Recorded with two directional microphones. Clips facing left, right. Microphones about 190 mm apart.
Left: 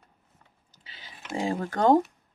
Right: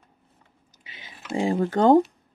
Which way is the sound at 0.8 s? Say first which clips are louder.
Right 4 dB; 20° right (ahead or behind).